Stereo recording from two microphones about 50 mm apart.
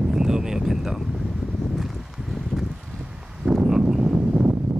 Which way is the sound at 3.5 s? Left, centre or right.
Centre.